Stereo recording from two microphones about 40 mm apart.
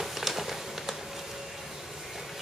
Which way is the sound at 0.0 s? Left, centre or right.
Centre.